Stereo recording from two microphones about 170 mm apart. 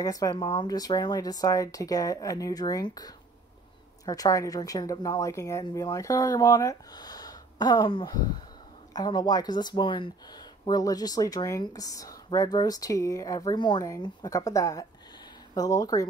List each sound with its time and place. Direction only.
0.0 s a woman's voice: 20° left (ahead or behind)